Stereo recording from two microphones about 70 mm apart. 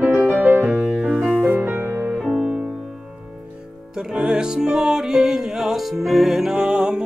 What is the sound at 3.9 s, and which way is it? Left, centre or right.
Music, centre.